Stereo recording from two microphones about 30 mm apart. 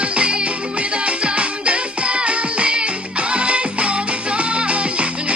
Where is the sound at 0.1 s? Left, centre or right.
Right.